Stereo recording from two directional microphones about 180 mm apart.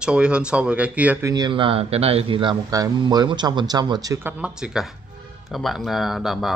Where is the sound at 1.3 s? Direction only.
25° right (ahead or behind).